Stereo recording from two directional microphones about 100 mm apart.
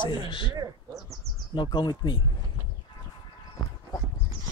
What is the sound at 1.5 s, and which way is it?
Speech, 50° left (ahead or behind).